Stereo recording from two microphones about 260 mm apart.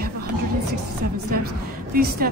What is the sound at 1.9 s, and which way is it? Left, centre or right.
Speech, right.